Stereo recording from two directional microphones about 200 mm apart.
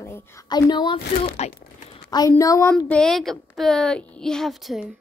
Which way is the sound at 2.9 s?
Centre (ahead or behind).